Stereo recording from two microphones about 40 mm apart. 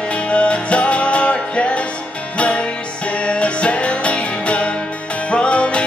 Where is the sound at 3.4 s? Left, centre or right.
Left.